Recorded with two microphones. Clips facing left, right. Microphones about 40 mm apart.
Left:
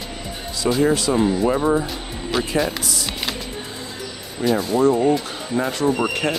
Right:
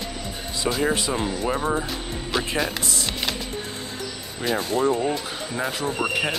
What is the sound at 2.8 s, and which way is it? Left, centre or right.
Music, right.